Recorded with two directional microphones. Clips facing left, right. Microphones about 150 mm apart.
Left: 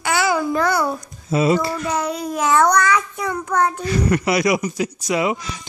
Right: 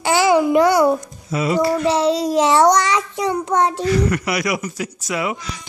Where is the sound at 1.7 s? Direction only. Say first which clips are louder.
Right 6 dB; 30° right (ahead or behind).